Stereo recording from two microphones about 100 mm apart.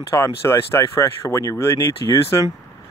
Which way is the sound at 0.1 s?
25° left (ahead or behind).